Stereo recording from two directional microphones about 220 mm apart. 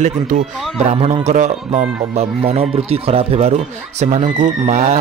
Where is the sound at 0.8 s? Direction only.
30° right (ahead or behind).